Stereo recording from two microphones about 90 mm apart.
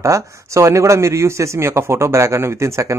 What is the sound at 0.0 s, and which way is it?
Speech, 35° right (ahead or behind).